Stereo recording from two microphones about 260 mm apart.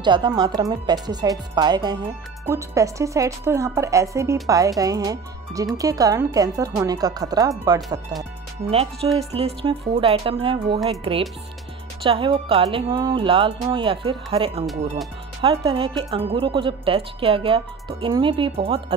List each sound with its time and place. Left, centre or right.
0.0 s a woman's voice: centre